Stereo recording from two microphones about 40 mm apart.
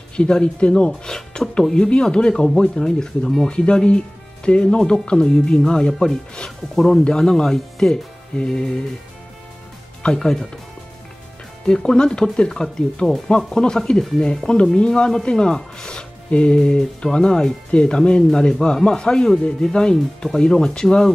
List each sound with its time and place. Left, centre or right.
0.1 s speech: left
1.0 s speech: centre
10.0 s speech: centre
11.6 s speech: centre